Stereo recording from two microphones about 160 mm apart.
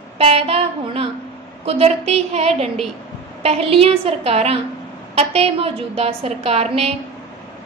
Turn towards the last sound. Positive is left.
turn(degrees=-40)  # may be behind; listen again after turning